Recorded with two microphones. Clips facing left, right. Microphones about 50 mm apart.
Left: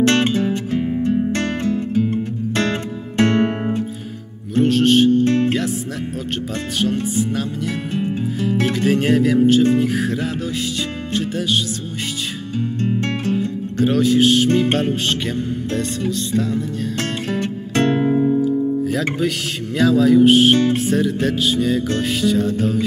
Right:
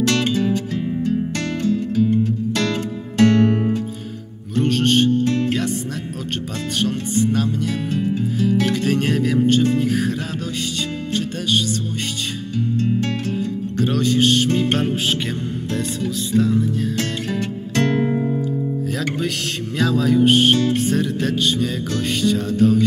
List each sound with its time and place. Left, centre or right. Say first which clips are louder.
0.0 s music: left 3 dB; left
4.6 s music: left 3 dB; centre
5.2 s music: left 3 dB; left
6.5 s speech: left 2 dB; centre
7.9 s music: even; left
8.3 s music: right 1 dB; centre
12.5 s music: right 1 dB; left
13.7 s music: left 3 dB; centre
16.1 s speech: right 4 dB; centre
16.9 s music: left 1 dB; left
18.4 s music: left 5 dB; centre
19.1 s speech: left 2 dB; centre